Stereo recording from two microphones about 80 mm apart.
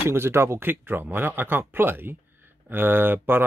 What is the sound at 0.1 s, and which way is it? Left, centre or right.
Speech, right.